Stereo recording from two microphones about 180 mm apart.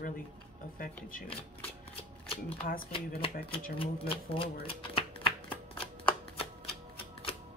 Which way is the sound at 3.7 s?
30° left (ahead or behind).